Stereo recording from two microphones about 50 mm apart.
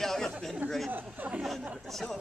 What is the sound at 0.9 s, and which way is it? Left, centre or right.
Speech, right.